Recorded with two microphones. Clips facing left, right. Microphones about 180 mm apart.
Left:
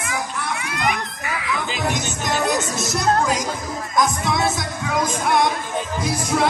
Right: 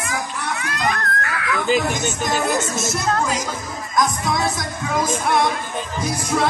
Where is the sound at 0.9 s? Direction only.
15° left (ahead or behind).